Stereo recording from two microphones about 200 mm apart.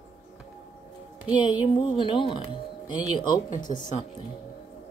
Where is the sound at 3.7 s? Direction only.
35° left (ahead or behind).